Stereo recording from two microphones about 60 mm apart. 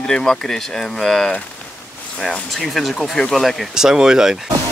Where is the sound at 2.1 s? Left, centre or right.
Centre.